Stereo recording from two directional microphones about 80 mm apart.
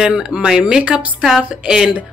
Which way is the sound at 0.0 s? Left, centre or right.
Centre.